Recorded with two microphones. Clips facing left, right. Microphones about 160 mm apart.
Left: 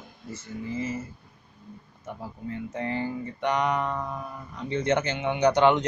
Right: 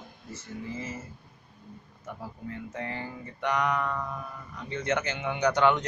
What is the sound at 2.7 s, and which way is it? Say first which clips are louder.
Speech: left 9 dB; 25° left (ahead or behind).